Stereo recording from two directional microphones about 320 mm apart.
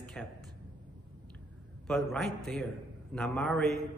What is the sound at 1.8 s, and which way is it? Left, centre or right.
A man's voice, centre.